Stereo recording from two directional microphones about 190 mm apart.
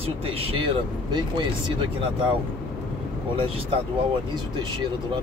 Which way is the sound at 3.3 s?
30° right (ahead or behind).